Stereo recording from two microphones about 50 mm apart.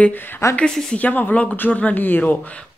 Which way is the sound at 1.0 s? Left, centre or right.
Left.